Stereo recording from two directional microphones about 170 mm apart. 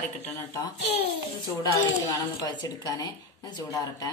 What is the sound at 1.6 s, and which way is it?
A woman's voice, 20° left (ahead or behind).